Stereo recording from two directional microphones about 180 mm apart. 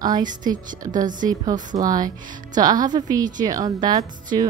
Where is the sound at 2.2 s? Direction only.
50° right (ahead or behind).